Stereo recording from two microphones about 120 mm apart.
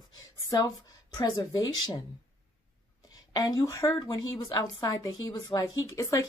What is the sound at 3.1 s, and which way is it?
Speech, 30° left (ahead or behind).